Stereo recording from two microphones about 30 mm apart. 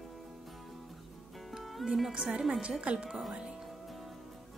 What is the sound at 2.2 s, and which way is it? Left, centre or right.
Speech, right.